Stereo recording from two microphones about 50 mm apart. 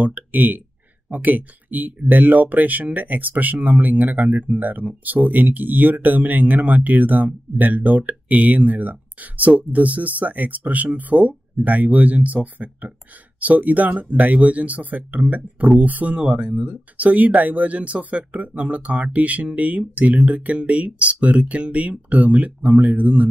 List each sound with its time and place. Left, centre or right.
0.0 s speech: right